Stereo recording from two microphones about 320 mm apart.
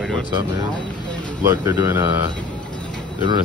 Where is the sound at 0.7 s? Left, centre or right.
Centre.